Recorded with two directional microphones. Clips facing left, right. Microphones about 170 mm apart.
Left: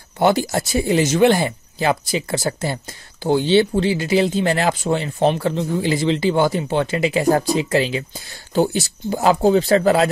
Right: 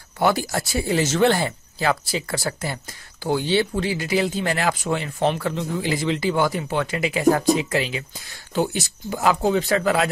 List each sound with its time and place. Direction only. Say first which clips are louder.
0.2 s speech: left 4 dB; 25° left (ahead or behind)